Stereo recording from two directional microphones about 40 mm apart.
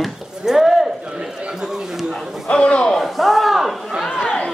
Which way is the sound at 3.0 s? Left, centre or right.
Centre.